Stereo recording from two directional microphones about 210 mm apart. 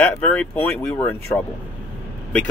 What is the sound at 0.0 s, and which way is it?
Speech, 5° left (ahead or behind).